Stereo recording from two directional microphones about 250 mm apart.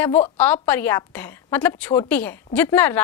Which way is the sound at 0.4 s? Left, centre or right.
Centre.